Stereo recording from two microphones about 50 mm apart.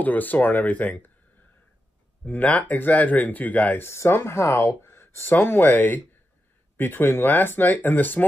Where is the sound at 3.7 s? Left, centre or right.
Left.